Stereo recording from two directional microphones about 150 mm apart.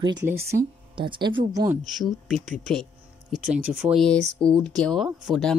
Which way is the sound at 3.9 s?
5° left (ahead or behind).